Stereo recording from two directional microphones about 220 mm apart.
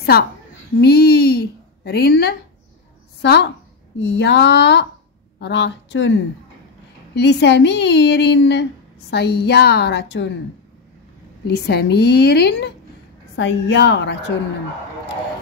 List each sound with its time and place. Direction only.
0.7 s a woman's voice: 45° left (ahead or behind)
7.2 s a woman's voice: 50° left (ahead or behind)
11.4 s a woman's voice: 45° left (ahead or behind)